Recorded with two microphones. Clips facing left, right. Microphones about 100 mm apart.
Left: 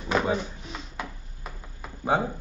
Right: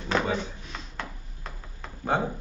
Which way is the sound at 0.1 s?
5° left (ahead or behind).